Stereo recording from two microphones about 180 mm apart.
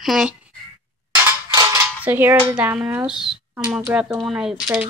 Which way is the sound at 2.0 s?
10° right (ahead or behind).